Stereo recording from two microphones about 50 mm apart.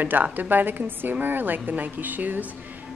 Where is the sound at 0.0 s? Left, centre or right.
Right.